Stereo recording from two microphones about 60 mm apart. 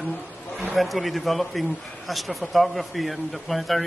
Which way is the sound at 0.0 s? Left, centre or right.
Left.